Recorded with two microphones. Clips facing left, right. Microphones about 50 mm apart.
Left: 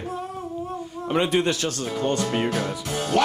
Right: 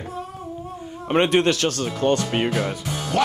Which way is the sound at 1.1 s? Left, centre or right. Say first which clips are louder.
Right 4 dB; right.